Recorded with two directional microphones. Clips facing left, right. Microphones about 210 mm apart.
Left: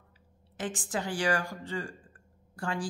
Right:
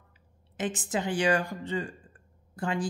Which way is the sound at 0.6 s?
20° right (ahead or behind).